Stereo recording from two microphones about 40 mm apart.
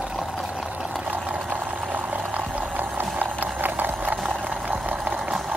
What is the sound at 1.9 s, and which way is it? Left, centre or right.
Boiling, right.